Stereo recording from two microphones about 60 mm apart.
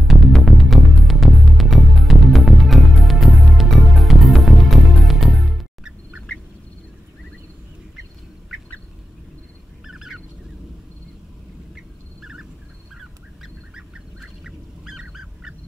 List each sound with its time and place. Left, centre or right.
0.1 s music: centre
9.8 s duck: centre
12.2 s a sound: centre
13.4 s duck: centre